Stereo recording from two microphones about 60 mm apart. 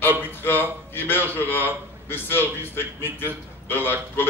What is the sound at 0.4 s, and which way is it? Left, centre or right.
A man's voice, left.